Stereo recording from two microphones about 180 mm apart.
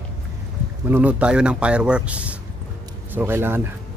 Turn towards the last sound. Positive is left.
turn(degrees=-10)  # may be behind; listen again after turning